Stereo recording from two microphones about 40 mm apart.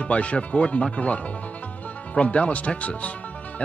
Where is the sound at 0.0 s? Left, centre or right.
Left.